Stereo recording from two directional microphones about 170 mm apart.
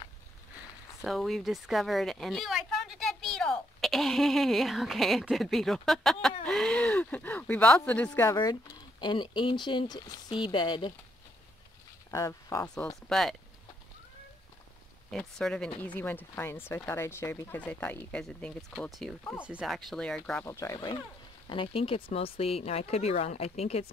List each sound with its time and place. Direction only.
1.0 s a woman's voice: centre (ahead or behind)
9.0 s speech: 25° left (ahead or behind)
12.1 s speech: 20° left (ahead or behind)
13.1 s a woman's voice: centre (ahead or behind)
15.0 s a woman's voice: 5° left (ahead or behind)
20.4 s speech: 15° left (ahead or behind); by 23.9 s 40° left (ahead or behind)